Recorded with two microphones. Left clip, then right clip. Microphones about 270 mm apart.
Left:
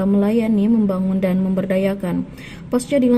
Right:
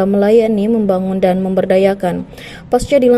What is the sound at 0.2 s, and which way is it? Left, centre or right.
A woman's voice, centre.